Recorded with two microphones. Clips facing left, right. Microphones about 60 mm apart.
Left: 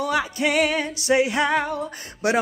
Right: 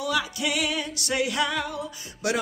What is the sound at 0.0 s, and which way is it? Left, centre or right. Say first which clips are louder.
Music: left 4 dB; left.